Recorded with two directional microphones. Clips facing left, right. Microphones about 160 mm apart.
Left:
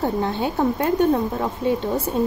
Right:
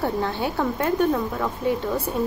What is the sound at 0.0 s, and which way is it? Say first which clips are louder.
A woman's voice: left 2 dB; 20° left (ahead or behind).